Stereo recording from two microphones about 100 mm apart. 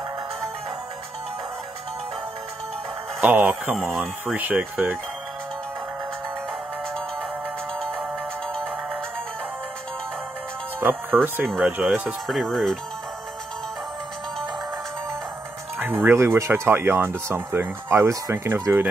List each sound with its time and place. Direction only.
3.2 s speech: 15° right (ahead or behind)
3.7 s speech: centre (ahead or behind)
4.4 s speech: 15° right (ahead or behind)
10.8 s speech: 20° right (ahead or behind)
12.3 s speech: 5° left (ahead or behind)
15.8 s speech: 20° right (ahead or behind)